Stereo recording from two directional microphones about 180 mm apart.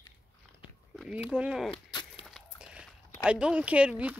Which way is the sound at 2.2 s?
Centre (ahead or behind).